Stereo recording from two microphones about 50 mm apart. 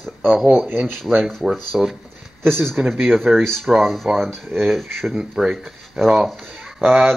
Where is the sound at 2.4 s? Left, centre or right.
Centre.